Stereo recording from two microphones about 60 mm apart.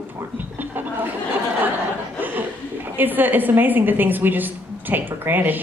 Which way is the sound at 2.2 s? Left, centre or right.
Right.